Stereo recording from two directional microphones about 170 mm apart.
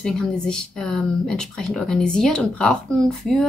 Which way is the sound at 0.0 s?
5° left (ahead or behind).